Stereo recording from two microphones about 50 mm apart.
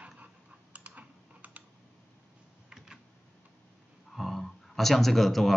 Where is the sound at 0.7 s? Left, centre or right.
Right.